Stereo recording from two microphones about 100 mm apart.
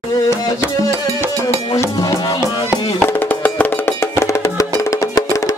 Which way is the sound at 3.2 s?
15° left (ahead or behind).